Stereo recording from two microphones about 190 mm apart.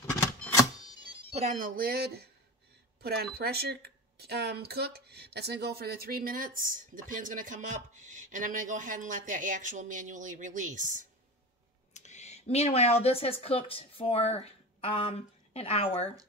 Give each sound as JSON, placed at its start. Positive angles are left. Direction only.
{"t": 0.0, "sound": "cash register", "side_deg": 10}
{"t": 1.3, "sound": "speech", "side_deg": -40}
{"t": 11.9, "sound": "speech", "side_deg": 35}